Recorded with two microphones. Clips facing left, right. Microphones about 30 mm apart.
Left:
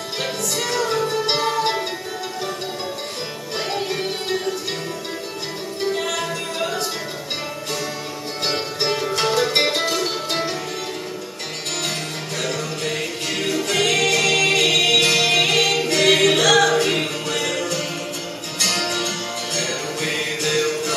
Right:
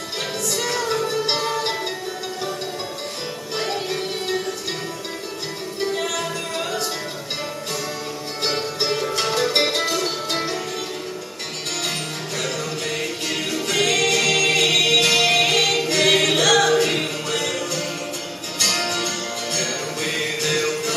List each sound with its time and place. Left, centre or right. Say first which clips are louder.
0.6 s music: left 2 dB; centre
3.5 s music: left 1 dB; centre
5.8 s music: left 1 dB; centre
8.7 s music: left 1 dB; centre
12.4 s music: left 1 dB; centre